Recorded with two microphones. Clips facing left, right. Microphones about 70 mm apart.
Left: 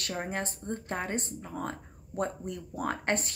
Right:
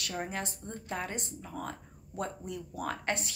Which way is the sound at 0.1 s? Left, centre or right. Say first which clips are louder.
Left 3 dB; left.